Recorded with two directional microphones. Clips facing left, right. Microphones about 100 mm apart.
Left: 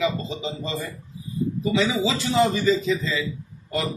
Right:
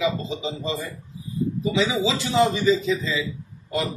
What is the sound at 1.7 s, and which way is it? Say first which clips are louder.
Speech: left 1 dB; 15° right (ahead or behind).